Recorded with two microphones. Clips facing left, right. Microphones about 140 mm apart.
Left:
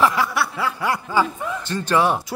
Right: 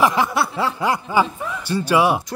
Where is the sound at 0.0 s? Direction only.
25° right (ahead or behind).